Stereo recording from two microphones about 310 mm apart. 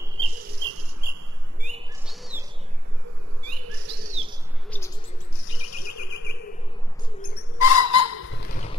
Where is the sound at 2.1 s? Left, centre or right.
Centre.